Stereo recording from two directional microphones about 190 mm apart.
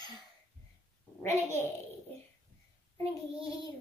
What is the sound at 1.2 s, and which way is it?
Speech, 15° left (ahead or behind).